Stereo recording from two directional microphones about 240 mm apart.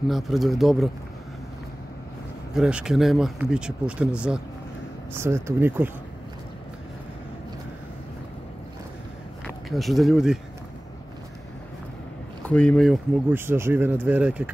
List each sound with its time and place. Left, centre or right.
0.1 s speech: centre
2.5 s speech: centre
9.7 s speech: centre
12.4 s speech: centre